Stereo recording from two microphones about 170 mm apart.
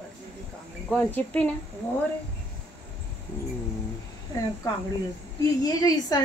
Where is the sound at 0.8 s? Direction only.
10° left (ahead or behind).